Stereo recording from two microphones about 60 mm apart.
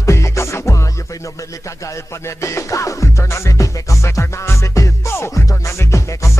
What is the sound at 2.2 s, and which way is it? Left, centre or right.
Music, left.